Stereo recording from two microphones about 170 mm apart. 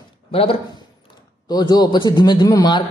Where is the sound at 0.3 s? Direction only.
35° left (ahead or behind).